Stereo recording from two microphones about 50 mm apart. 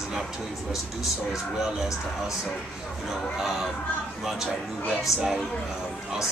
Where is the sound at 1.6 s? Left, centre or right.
Centre.